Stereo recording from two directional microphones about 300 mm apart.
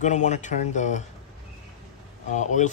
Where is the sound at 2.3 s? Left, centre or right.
Left.